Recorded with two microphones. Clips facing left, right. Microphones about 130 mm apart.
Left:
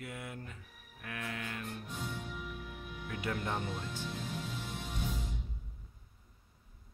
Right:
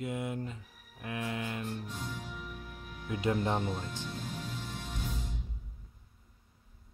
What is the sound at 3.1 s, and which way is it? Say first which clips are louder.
Speech: right 6 dB; 20° right (ahead or behind).